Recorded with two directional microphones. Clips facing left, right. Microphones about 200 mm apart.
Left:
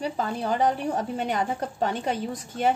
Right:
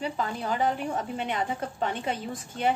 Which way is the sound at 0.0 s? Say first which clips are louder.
Left 3 dB; 35° left (ahead or behind).